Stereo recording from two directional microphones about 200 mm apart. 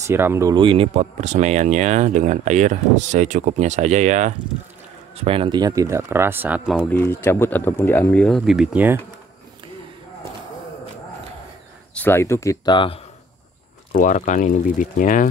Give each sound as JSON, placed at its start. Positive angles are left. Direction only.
{"t": 0.0, "sound": "speech", "side_deg": -10}
{"t": 11.9, "sound": "speech", "side_deg": 10}
{"t": 13.9, "sound": "speech", "side_deg": 40}